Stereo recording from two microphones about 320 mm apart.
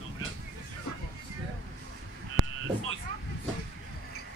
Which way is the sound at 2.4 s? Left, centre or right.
Right.